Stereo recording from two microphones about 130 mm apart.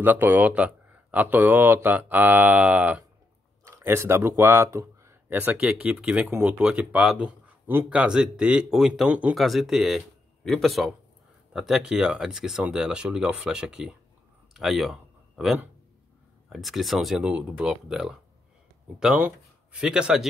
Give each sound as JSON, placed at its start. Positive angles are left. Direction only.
{"t": 0.0, "sound": "a man's voice", "side_deg": -15}